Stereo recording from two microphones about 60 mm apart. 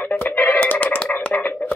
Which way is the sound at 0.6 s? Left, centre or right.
Left.